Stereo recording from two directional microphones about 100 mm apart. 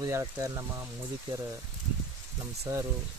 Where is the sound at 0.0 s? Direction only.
30° right (ahead or behind).